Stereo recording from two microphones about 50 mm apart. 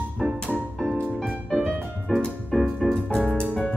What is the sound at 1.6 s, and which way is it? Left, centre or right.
Music, centre.